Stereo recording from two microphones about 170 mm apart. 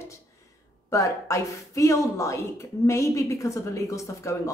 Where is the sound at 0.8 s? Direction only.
20° left (ahead or behind).